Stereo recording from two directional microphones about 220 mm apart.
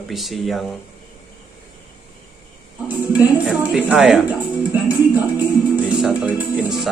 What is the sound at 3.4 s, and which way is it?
Speech, centre (ahead or behind).